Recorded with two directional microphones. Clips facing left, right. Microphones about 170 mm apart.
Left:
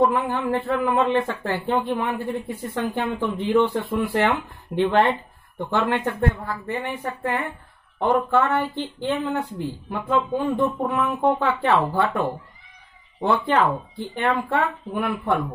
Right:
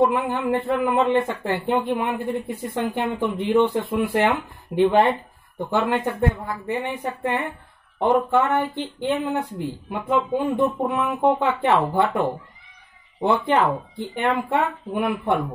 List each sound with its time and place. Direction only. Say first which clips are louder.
0.0 s speech: right 1 dB; 15° right (ahead or behind)